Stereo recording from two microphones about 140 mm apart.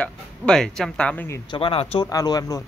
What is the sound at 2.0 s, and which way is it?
Speech, 25° left (ahead or behind).